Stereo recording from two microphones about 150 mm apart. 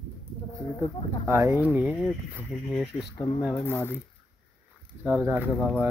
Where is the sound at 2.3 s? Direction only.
Centre (ahead or behind).